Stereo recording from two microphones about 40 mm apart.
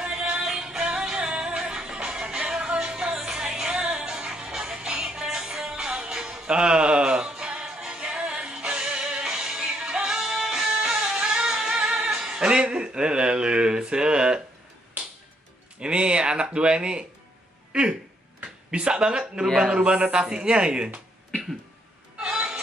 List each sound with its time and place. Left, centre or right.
0.0 s music: right
0.4 s music: centre
15.8 s a sound: right
18.7 s speech: right